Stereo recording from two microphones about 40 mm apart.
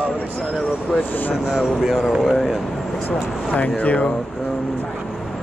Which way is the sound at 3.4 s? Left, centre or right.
Left.